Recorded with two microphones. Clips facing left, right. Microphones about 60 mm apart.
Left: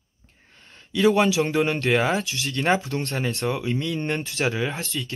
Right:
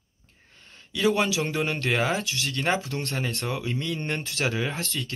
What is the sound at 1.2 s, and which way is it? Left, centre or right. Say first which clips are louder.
Speech: left 5 dB; left.